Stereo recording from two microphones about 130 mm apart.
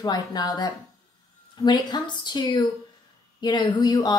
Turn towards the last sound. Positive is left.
turn(degrees=30)  # may be behind; listen again after turning